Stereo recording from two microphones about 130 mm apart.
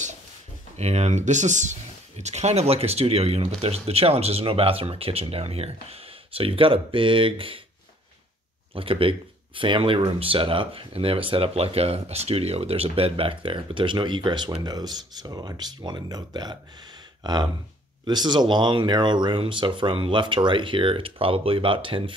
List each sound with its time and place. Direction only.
0.7 s speech: 55° right (ahead or behind)
8.7 s speech: 45° right (ahead or behind)
17.2 s a sound: 35° right (ahead or behind)
18.0 s speech: 35° right (ahead or behind)